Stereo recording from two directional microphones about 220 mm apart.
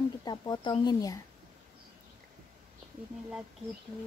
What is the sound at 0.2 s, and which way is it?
Speech, 20° left (ahead or behind).